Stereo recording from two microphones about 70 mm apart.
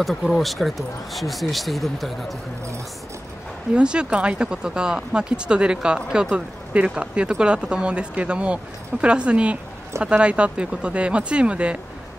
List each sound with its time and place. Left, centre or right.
0.0 s speech: centre
3.7 s speech: centre